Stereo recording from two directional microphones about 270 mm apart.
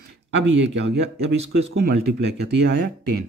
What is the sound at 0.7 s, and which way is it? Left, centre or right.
Speech, right.